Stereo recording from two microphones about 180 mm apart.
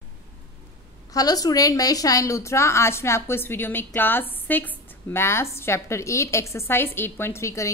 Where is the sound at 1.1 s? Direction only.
20° left (ahead or behind).